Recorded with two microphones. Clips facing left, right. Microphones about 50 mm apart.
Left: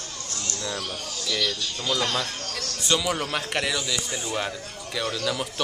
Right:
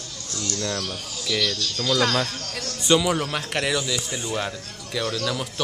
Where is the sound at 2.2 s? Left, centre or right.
Left.